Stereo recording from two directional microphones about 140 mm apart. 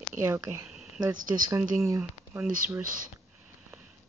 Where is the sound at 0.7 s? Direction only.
5° right (ahead or behind).